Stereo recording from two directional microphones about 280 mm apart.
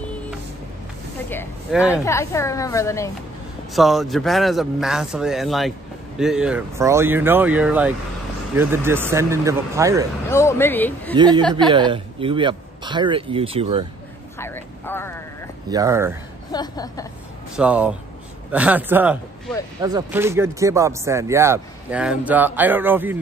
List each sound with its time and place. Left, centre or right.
1.3 s a woman's voice: centre
3.7 s speech: centre
10.3 s a woman's voice: centre
11.1 s speech: centre
14.4 s speech: centre
15.7 s speech: centre
16.5 s a woman's voice: centre
17.6 s speech: centre